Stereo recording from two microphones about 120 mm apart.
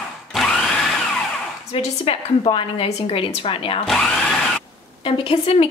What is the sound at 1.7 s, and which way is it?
Speech, 55° left (ahead or behind).